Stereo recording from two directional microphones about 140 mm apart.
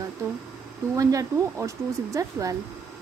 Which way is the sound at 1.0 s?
25° right (ahead or behind).